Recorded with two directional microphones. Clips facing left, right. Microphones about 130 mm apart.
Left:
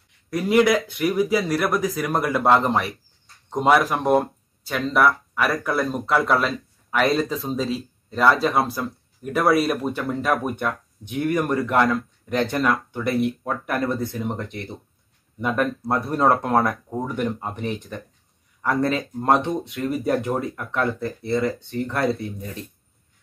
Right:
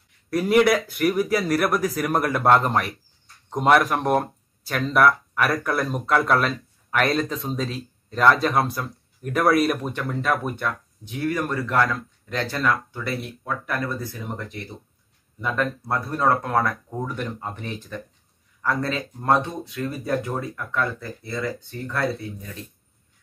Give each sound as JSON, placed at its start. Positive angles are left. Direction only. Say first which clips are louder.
{"t": 0.3, "sound": "speech", "louder": "even", "side_deg": 0}